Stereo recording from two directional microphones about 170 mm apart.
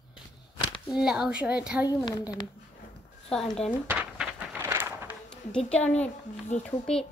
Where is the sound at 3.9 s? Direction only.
10° right (ahead or behind).